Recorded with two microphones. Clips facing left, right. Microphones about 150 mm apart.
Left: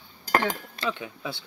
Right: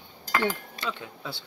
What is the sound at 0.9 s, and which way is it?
Speech, 15° left (ahead or behind).